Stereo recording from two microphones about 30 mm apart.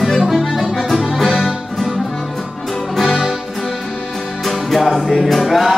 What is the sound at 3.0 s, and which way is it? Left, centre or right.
Music, centre.